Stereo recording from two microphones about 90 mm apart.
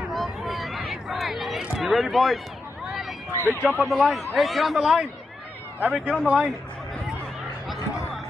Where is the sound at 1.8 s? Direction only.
Centre (ahead or behind).